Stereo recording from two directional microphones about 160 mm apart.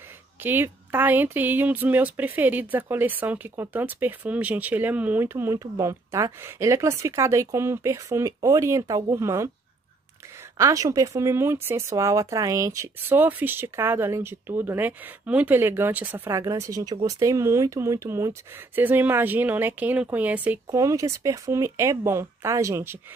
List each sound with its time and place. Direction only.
0.4 s speech: 10° right (ahead or behind)
10.6 s speech: 20° right (ahead or behind)